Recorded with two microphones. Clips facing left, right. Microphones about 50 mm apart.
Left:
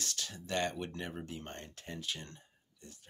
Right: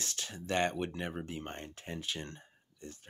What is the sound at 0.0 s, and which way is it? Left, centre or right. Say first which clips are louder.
Speech: right 1 dB; right.